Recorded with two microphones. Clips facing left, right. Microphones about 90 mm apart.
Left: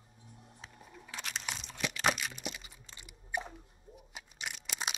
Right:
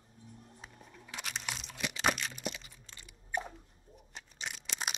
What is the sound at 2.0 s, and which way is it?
Crack, 5° left (ahead or behind).